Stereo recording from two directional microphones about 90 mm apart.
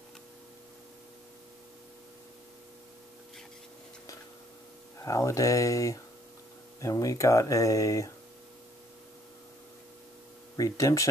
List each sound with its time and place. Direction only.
4.9 s speech: 35° left (ahead or behind)
10.5 s speech: 40° left (ahead or behind)